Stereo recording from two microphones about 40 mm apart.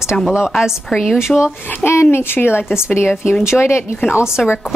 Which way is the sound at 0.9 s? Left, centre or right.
Centre.